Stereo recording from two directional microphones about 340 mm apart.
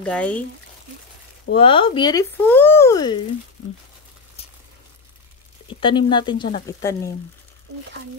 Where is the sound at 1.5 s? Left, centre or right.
Centre.